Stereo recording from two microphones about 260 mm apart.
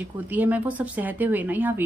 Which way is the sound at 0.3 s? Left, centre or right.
Centre.